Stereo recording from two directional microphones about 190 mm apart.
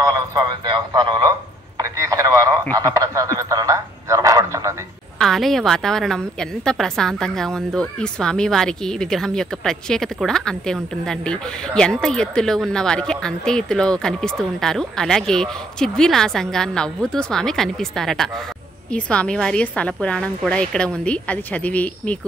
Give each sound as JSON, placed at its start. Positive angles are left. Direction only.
{"t": 0.0, "sound": "speech", "side_deg": -20}
{"t": 1.8, "sound": "radio", "side_deg": -15}
{"t": 2.7, "sound": "a sound", "side_deg": -15}
{"t": 5.2, "sound": "a woman's voice", "side_deg": 0}